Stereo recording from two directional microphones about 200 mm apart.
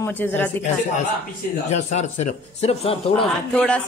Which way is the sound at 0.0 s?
10° left (ahead or behind).